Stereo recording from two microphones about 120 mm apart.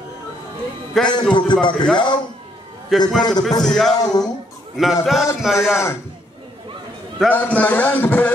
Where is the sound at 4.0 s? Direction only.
30° left (ahead or behind).